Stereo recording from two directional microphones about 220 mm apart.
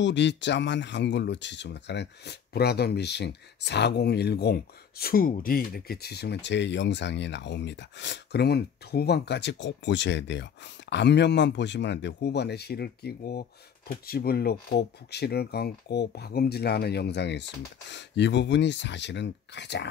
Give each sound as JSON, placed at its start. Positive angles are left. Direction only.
{"t": 0.0, "sound": "speech", "side_deg": 55}